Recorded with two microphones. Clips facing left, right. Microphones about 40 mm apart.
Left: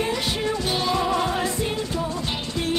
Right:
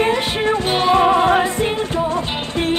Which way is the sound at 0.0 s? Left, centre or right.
Right.